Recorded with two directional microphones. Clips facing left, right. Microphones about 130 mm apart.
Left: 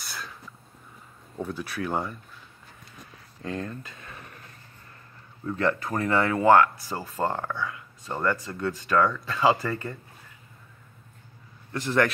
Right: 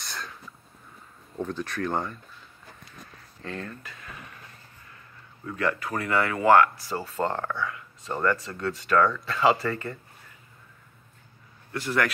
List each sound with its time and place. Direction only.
0.0 s a sound: 5° left (ahead or behind)
1.4 s speech: 10° left (ahead or behind)
3.4 s speech: 20° left (ahead or behind)
5.6 s speech: 25° left (ahead or behind)
11.7 s speech: 20° left (ahead or behind)